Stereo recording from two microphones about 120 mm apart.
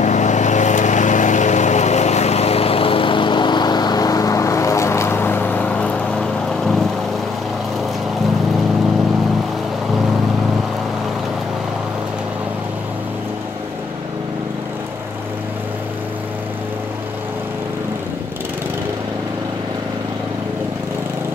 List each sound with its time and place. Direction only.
0.0 s vehicle: 85° left; by 6.8 s 5° left (ahead or behind)